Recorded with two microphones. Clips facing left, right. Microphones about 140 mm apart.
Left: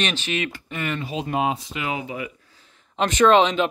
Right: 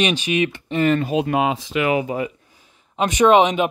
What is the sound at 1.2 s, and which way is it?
Speech, 80° right.